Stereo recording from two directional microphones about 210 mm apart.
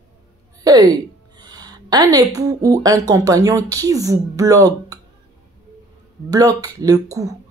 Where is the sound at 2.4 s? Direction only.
15° right (ahead or behind).